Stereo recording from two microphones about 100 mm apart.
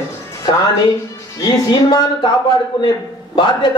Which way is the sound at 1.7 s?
45° left (ahead or behind).